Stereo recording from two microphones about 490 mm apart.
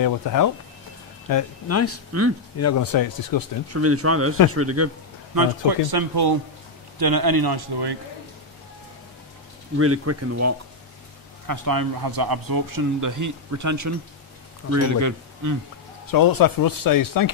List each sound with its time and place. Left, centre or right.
0.0 s speech: left
1.3 s speech: left
3.7 s speech: right
5.3 s a man's voice: right
9.8 s speech: right
11.4 s speech: right
16.1 s speech: left